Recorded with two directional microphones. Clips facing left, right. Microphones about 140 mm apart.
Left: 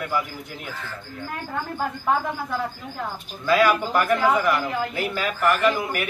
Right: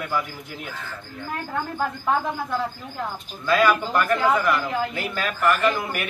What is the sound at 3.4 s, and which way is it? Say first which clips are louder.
A man's voice: left 1 dB; 5° left (ahead or behind).